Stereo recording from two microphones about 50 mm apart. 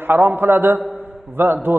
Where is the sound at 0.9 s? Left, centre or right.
Right.